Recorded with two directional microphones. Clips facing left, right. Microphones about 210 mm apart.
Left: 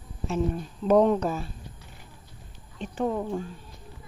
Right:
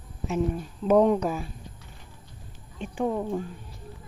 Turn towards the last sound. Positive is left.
turn(degrees=-5)  # may be behind; listen again after turning